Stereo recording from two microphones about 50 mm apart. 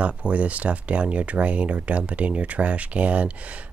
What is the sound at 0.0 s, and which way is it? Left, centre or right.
Speech, right.